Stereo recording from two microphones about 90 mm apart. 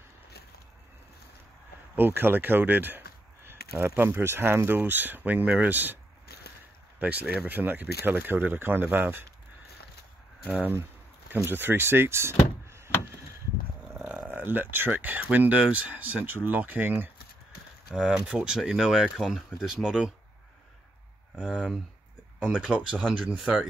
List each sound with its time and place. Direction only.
2.0 s speech: 25° right (ahead or behind)
7.0 s speech: 15° right (ahead or behind)
11.4 s speech: 20° right (ahead or behind)
14.3 s speech: 20° right (ahead or behind)
17.9 s speech: 5° right (ahead or behind)
21.5 s speech: 5° left (ahead or behind)
22.6 s speech: 15° right (ahead or behind)
23.3 s speech: 5° right (ahead or behind)